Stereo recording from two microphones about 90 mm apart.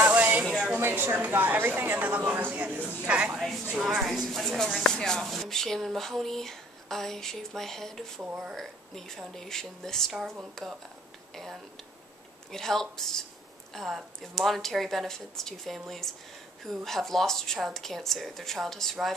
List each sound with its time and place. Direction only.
0.0 s a sound: 20° right (ahead or behind)
0.7 s a woman's voice: 25° right (ahead or behind)
3.3 s speech: centre (ahead or behind)
12.4 s speech: 5° left (ahead or behind)